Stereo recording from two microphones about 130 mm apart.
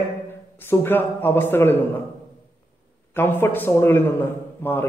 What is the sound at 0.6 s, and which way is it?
A man's voice, 15° left (ahead or behind).